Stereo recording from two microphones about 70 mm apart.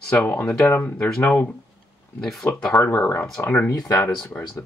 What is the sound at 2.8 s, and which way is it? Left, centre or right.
Speech, left.